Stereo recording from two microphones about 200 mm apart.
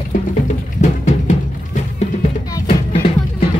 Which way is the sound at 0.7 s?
35° left (ahead or behind).